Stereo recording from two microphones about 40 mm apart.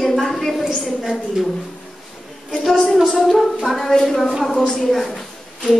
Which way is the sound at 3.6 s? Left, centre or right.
Centre.